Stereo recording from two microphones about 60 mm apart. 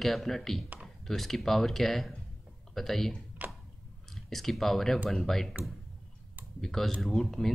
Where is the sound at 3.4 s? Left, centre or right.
Right.